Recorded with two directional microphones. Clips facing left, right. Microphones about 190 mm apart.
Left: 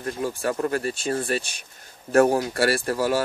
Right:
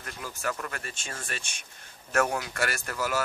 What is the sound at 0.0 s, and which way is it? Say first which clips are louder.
Speech: left 9 dB; 30° left (ahead or behind).